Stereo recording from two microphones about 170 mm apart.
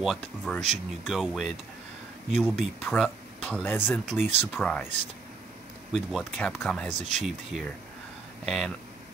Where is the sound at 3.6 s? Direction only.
10° left (ahead or behind).